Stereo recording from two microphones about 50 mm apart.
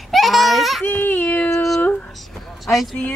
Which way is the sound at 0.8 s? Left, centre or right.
Left.